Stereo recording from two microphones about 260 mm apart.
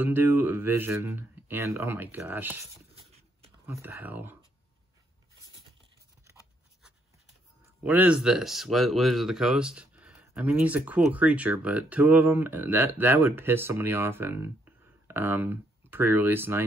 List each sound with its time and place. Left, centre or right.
0.0 s speech: centre
7.8 s speech: centre